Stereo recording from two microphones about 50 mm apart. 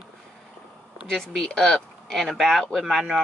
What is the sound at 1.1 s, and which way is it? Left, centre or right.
Speech, centre.